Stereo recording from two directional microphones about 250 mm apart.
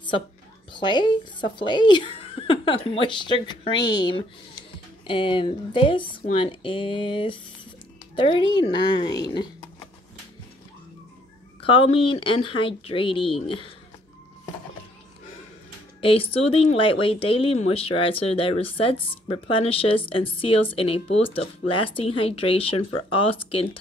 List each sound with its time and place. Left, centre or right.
0.7 s speech: centre
11.6 s speech: left
16.0 s speech: left